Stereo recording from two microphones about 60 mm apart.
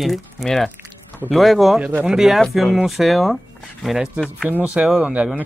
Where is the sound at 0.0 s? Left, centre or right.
Centre.